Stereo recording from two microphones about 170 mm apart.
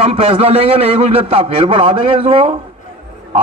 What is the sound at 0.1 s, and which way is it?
A man's voice, 35° right (ahead or behind).